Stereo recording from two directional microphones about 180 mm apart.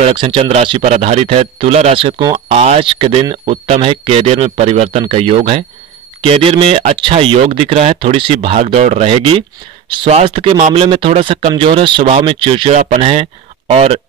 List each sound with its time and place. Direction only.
0.0 s a man's voice: 30° right (ahead or behind)